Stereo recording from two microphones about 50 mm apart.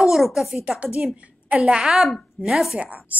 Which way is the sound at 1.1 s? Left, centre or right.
Right.